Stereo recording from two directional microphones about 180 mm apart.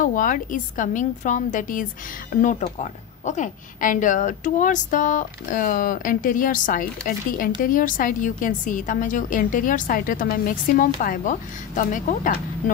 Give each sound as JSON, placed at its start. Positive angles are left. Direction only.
{"t": 0.0, "sound": "a woman's voice", "side_deg": 50}